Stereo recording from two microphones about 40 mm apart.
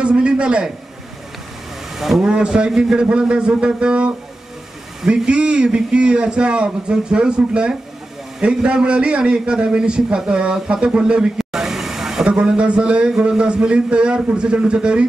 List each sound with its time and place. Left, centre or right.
0.0 s a man's voice: right
2.0 s speech: centre
2.2 s a man's voice: right
5.3 s a man's voice: right
5.6 s a man's voice: right
11.3 s vehicle: centre
12.3 s a man's voice: right